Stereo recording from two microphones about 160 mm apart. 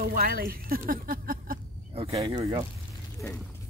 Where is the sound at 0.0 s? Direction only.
70° right (ahead or behind).